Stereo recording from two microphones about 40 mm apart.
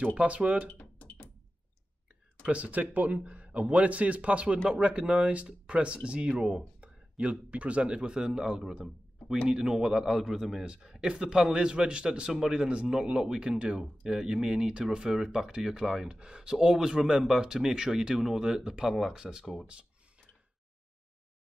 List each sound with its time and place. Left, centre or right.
0.0 s speech: right
0.7 s a sound: left
2.5 s speech: right
3.2 s a man's voice: right; by 10.6 s centre
11.0 s speech: right